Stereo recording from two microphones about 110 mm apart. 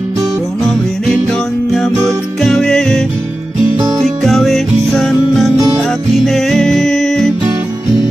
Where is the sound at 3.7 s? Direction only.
30° right (ahead or behind).